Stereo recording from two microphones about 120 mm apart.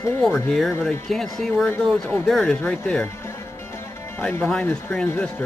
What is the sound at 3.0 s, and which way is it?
Music, 20° left (ahead or behind).